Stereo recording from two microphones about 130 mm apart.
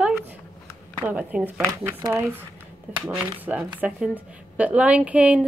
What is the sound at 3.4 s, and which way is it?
A woman's voice, 10° right (ahead or behind).